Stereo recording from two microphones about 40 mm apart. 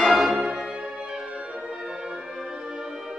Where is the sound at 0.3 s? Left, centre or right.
Right.